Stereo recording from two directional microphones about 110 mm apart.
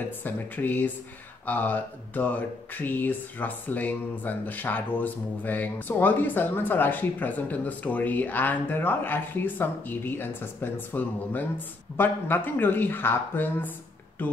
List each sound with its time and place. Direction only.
0.2 s speech: 15° left (ahead or behind)